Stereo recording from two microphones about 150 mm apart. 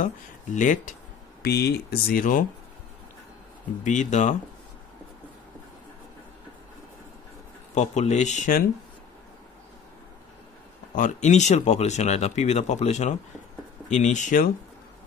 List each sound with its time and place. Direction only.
0.0 s speech: 60° left (ahead or behind)
1.4 s speech: 90° left; by 2.4 s 70° left (ahead or behind)
3.8 s speech: 55° left (ahead or behind)
7.7 s speech: 50° left (ahead or behind)
11.0 s speech: 55° left (ahead or behind)